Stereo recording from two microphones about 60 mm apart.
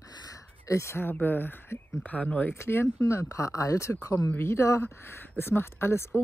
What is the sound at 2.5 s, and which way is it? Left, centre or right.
Speech, left.